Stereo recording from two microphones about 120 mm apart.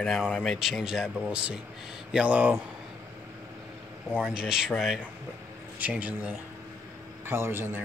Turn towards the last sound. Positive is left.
turn(degrees=-20)  # may be behind; listen again after turning